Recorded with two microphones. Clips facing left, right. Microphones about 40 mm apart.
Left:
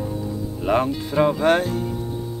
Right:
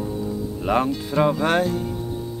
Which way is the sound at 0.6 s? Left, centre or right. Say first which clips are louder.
Left 1 dB; centre.